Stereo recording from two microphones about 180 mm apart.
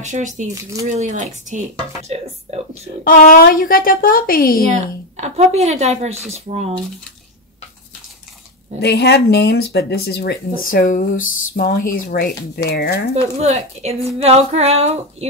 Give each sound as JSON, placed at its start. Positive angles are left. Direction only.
{"t": 0.0, "sound": "a woman's voice", "side_deg": -40}
{"t": 3.0, "sound": "a woman's voice", "side_deg": 50}
{"t": 5.1, "sound": "a woman's voice", "side_deg": -35}
{"t": 8.8, "sound": "speech", "side_deg": 65}
{"t": 13.1, "sound": "a woman's voice", "side_deg": -35}